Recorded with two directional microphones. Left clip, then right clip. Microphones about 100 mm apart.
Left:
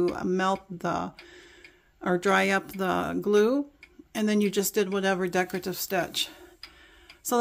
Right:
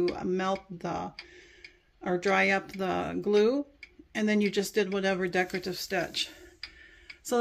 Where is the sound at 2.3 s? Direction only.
40° left (ahead or behind).